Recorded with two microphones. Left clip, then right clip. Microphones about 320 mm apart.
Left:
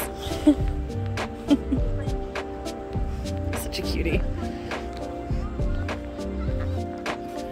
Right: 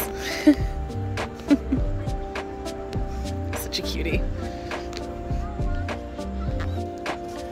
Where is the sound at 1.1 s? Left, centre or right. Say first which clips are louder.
Right 1 dB; centre.